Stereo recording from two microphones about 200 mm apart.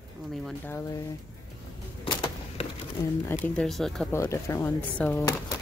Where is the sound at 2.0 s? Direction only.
25° left (ahead or behind).